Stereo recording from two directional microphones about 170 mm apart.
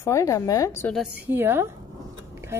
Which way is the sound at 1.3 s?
15° right (ahead or behind).